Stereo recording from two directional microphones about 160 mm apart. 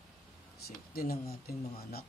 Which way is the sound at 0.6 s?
70° left (ahead or behind).